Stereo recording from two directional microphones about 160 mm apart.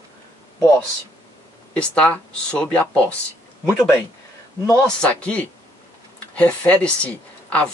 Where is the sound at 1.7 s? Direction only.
5° left (ahead or behind).